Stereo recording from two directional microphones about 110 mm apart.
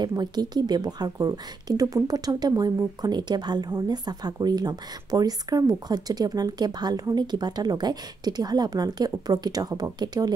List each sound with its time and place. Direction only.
0.0 s speech: 40° right (ahead or behind)